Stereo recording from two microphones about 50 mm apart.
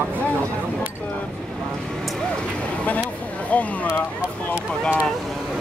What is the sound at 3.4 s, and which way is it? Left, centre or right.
Speech, left.